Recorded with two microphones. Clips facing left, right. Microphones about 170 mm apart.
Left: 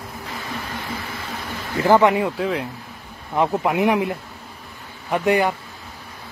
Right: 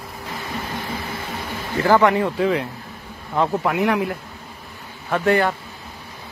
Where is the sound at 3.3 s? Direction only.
15° left (ahead or behind).